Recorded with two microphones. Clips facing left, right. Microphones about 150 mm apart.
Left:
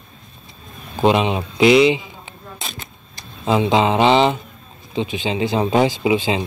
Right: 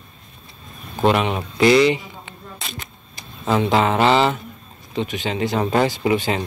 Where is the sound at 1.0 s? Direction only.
15° left (ahead or behind).